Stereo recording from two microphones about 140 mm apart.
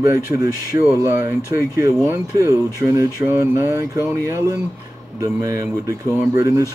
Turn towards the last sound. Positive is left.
turn(degrees=-20)  # may be behind; listen again after turning